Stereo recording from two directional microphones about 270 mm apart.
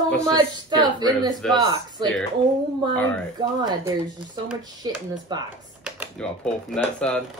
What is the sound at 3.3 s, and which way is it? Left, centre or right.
A woman's voice, centre.